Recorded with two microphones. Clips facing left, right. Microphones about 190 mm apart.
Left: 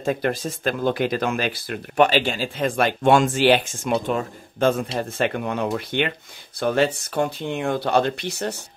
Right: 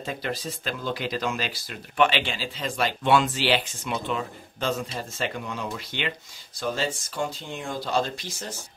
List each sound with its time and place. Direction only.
0.0 s speech: 50° left (ahead or behind)
2.0 s speech: 40° left (ahead or behind); by 8.5 s 65° left (ahead or behind)